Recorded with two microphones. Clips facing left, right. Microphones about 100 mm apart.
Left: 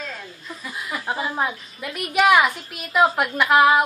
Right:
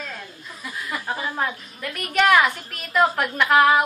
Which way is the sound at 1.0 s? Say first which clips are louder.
Left 2 dB; 15° left (ahead or behind).